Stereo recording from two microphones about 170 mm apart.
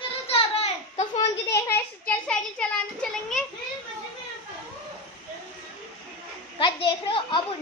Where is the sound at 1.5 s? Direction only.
15° left (ahead or behind).